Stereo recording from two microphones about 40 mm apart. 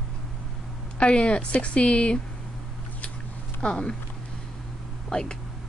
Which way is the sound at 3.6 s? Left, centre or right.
Left.